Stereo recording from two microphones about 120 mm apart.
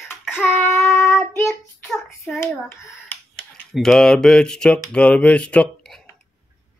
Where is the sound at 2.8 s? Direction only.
25° left (ahead or behind).